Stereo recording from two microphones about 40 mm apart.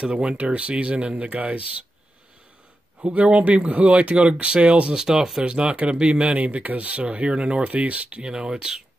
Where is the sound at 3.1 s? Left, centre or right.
Right.